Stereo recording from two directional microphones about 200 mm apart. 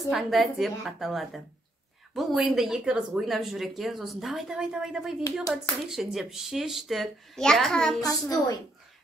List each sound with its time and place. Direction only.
0.1 s speech: centre (ahead or behind)
8.1 s a woman's voice: 15° left (ahead or behind)